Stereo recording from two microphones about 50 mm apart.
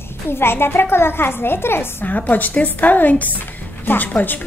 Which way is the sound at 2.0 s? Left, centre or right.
Left.